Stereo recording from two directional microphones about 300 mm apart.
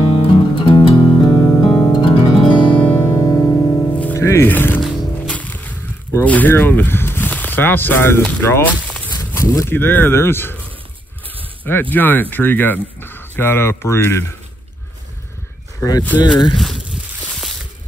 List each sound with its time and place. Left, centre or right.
0.0 s music: centre
2.7 s music: centre
11.6 s speech: centre
15.8 s speech: centre
16.5 s a sound: centre